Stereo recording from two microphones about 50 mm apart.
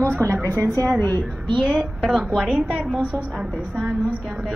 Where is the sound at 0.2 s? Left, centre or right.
Right.